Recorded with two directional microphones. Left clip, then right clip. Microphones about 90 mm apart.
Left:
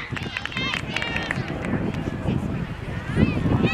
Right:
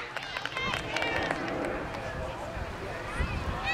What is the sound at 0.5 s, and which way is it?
Run, 25° left (ahead or behind).